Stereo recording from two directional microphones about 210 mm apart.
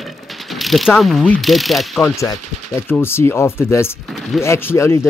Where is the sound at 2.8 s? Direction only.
10° left (ahead or behind).